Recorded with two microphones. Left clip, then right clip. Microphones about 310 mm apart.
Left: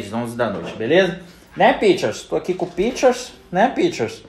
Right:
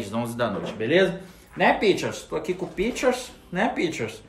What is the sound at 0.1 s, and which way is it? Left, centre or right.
Speech, centre.